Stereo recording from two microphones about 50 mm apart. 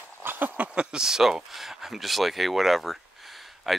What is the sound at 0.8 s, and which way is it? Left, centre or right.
Speech, centre.